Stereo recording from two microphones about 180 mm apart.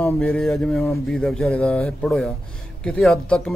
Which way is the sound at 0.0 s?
Centre (ahead or behind).